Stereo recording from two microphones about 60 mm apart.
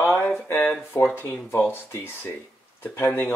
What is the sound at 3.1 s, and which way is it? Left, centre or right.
Speech, left.